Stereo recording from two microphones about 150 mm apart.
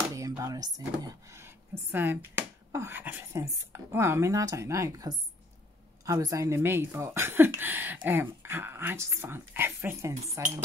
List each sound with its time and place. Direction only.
0.4 s speech: 25° right (ahead or behind)